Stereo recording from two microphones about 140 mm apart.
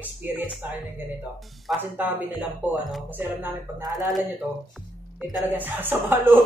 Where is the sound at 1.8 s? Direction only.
15° right (ahead or behind).